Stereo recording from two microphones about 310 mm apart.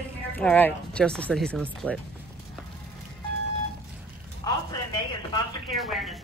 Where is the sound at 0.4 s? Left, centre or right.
Centre.